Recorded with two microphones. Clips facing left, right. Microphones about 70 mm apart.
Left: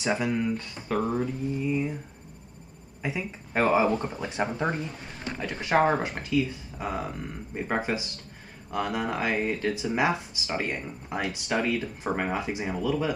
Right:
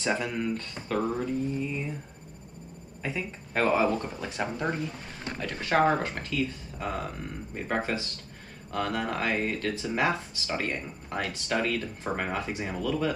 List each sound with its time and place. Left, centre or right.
0.0 s speech: centre
3.0 s speech: centre